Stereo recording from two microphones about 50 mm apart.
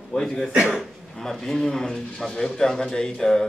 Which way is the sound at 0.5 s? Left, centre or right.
Centre.